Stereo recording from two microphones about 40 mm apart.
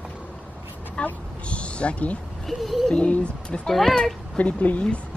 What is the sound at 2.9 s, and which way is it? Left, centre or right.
Speech, left.